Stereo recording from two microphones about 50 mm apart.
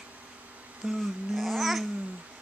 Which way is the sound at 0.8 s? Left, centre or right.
Centre.